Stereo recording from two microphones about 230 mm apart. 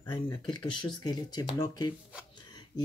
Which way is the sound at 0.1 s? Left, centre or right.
Centre.